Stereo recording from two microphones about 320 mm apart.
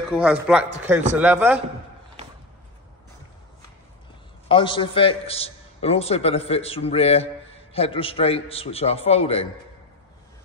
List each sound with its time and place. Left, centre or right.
0.1 s a man's voice: centre
4.5 s a man's voice: centre